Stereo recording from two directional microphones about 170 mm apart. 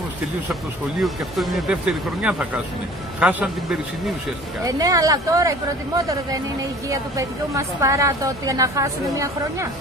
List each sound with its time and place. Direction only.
1.0 s a man's voice: centre (ahead or behind)
4.6 s a woman's voice: 20° right (ahead or behind)